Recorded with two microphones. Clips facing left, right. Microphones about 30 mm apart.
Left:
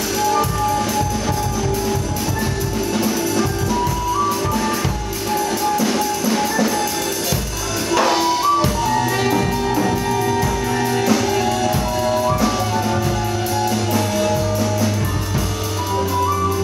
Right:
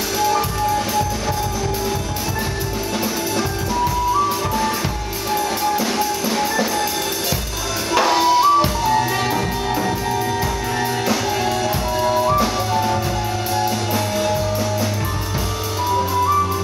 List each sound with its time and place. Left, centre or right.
5.3 s music: centre
6.3 s music: centre
8.2 s music: centre
9.2 s music: centre
11.6 s music: centre
13.9 s music: centre